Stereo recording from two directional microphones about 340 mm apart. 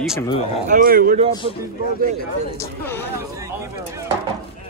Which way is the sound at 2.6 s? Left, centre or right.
Centre.